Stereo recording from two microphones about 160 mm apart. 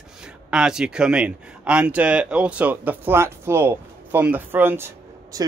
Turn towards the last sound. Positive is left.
turn(degrees=-20)  # may be behind; listen again after turning